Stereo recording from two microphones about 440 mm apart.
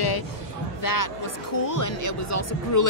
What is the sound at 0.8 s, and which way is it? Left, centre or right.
Speech, left.